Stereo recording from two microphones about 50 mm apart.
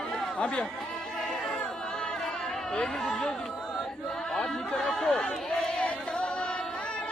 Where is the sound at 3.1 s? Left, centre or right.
Centre.